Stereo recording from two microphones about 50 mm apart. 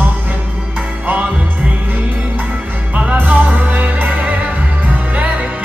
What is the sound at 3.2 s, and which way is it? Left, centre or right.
Music, right.